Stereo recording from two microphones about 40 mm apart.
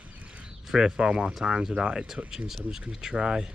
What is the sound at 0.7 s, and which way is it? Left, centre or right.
Speech, centre.